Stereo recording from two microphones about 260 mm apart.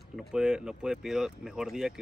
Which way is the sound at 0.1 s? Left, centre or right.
Centre.